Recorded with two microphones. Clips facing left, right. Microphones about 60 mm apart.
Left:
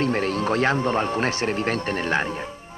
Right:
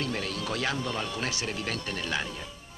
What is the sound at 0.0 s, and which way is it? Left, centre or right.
A man's voice, left.